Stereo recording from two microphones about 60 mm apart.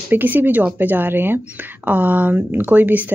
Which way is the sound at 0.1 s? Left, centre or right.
Right.